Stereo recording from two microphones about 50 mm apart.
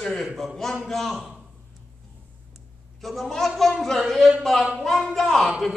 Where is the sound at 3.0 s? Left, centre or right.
Centre.